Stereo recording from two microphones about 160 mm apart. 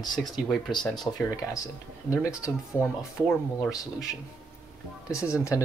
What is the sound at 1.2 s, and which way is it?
Speech, 20° left (ahead or behind).